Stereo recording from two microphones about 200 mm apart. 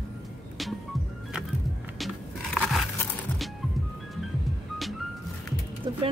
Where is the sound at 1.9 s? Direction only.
Centre (ahead or behind).